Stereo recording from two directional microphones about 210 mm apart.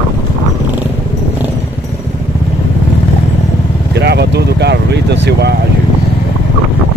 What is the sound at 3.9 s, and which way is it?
Vehicle, 50° right (ahead or behind).